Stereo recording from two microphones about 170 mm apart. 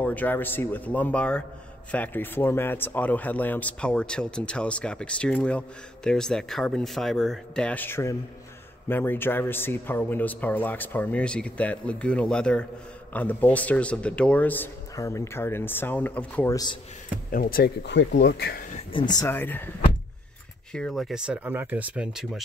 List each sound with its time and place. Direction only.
0.0 s speech: 10° left (ahead or behind)
17.3 s speech: 60° left (ahead or behind)
18.9 s speech: 25° left (ahead or behind)
19.2 s speech: 10° left (ahead or behind)
20.7 s speech: centre (ahead or behind)